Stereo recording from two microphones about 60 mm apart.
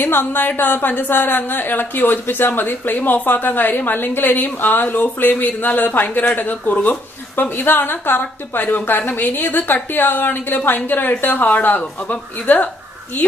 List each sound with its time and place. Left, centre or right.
0.0 s a woman's voice: left